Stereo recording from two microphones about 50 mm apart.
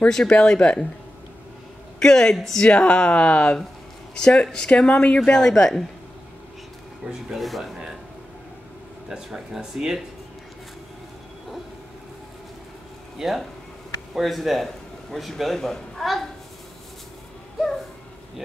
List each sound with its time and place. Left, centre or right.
0.1 s speech: centre
2.0 s a woman's voice: centre
5.3 s speech: centre
7.3 s speech: centre
9.1 s speech: centre
13.2 s a man's voice: centre